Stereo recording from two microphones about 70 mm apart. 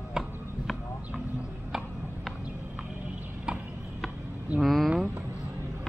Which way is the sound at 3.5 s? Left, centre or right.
Centre.